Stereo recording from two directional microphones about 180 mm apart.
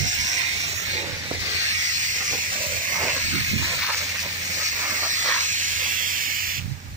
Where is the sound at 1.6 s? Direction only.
40° right (ahead or behind).